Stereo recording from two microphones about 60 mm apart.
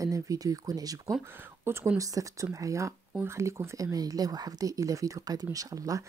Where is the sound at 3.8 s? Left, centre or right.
Right.